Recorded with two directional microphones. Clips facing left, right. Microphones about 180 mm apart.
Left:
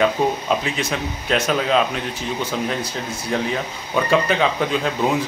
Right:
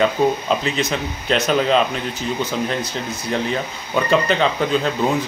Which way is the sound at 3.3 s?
Centre (ahead or behind).